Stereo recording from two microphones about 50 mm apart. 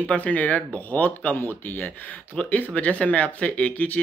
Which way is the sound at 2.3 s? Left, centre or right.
Left.